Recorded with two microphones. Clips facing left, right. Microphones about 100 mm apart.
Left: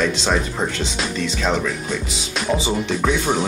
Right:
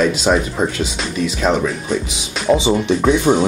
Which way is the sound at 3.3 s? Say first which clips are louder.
Right 9 dB; 20° right (ahead or behind).